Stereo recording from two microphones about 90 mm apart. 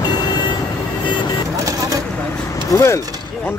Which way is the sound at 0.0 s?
50° left (ahead or behind).